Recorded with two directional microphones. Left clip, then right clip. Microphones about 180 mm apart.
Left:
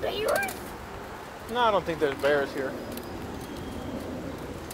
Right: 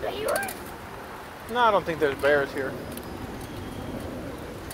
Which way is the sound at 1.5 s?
40° right (ahead or behind).